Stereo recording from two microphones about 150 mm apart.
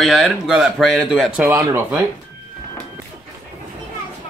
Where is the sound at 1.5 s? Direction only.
15° right (ahead or behind).